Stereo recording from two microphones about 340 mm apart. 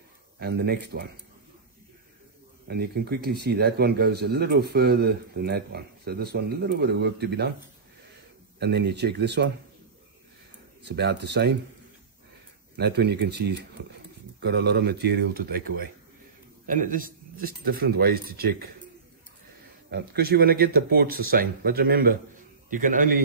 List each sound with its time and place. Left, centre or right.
0.4 s speech: right
2.7 s speech: right
8.5 s speech: right
10.8 s speech: right
12.7 s speech: right
19.9 s speech: right